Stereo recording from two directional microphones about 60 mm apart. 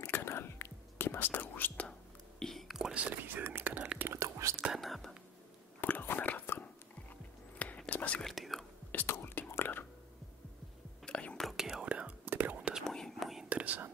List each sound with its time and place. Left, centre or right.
0.0 s whispering: left
1.9 s whispering: centre
2.9 s whispering: right
4.1 s whispering: right
4.7 s whispering: centre
5.8 s whispering: left
8.2 s whispering: centre
8.9 s whispering: left
11.1 s whispering: centre
11.5 s whispering: centre
12.3 s whispering: right
12.8 s whispering: centre
13.5 s whispering: right